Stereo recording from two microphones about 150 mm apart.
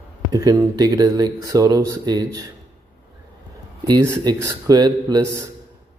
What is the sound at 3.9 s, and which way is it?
Speech, 25° right (ahead or behind).